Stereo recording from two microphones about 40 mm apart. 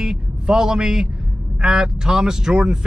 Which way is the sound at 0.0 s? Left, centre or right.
Centre.